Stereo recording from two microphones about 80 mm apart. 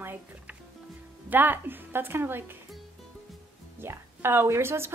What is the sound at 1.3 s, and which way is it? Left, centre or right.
A woman's voice, right.